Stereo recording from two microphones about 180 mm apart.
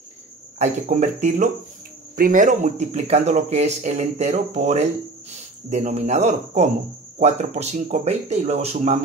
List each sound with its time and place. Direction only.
0.6 s speech: 40° right (ahead or behind)